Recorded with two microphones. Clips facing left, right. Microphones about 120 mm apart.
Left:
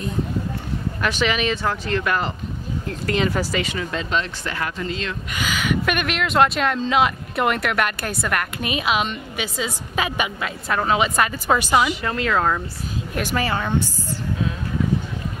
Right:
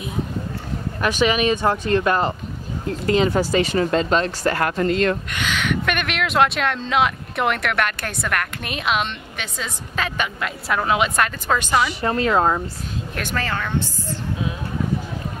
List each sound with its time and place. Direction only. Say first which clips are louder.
1.2 s speech: right 4 dB; 20° right (ahead or behind)
1.9 s speech: right 4 dB; 30° right (ahead or behind); by 5.1 s 55° right (ahead or behind)
5.3 s speech: even; centre (ahead or behind)
12.0 s speech: right 3 dB; 30° right (ahead or behind)
13.1 s a woman's voice: left 3 dB; 5° left (ahead or behind)